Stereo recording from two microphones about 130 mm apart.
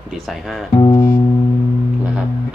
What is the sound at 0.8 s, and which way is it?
Music, 30° left (ahead or behind).